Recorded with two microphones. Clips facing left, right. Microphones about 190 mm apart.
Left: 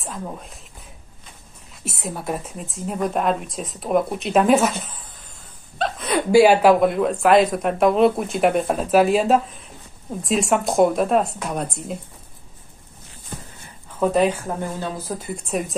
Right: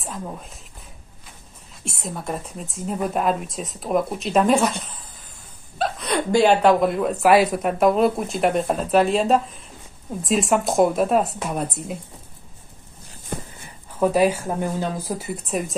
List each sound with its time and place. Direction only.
0.0 s speech: centre (ahead or behind)
1.9 s speech: 5° left (ahead or behind)
13.3 s a sound: 60° right (ahead or behind)
13.9 s speech: 5° right (ahead or behind)